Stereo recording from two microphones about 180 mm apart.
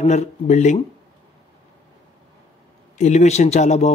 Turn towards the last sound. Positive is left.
turn(degrees=40)  # may be behind; listen again after turning